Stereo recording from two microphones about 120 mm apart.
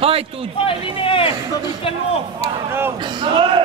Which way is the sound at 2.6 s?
20° right (ahead or behind).